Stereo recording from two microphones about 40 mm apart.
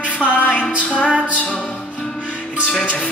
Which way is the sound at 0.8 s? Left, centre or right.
Left.